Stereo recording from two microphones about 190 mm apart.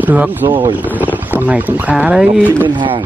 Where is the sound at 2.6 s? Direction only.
25° right (ahead or behind).